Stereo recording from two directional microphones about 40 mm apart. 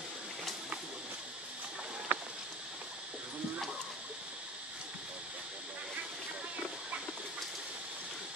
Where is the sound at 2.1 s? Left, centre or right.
Right.